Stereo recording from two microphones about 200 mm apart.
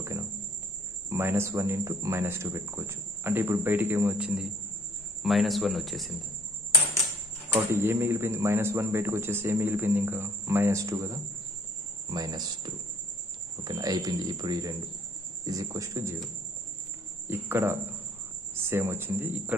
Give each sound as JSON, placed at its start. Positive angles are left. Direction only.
{"t": 1.1, "sound": "a man's voice", "side_deg": -15}
{"t": 7.4, "sound": "a man's voice", "side_deg": -10}
{"t": 12.1, "sound": "a man's voice", "side_deg": -20}
{"t": 17.3, "sound": "a man's voice", "side_deg": -10}